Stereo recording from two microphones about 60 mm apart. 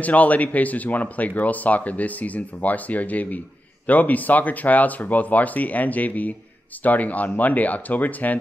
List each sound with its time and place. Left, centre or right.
0.0 s speech: left